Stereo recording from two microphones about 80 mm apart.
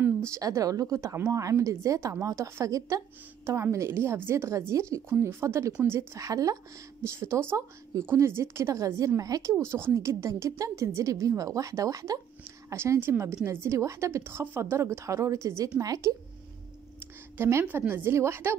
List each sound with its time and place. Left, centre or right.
0.3 s a woman's voice: right
7.2 s a woman's voice: right
9.6 s a woman's voice: right
17.4 s a woman's voice: right